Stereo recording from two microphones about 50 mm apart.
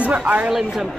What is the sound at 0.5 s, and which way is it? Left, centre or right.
Speech, centre.